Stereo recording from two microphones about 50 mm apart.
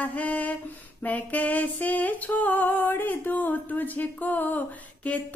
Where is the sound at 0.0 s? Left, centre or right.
Left.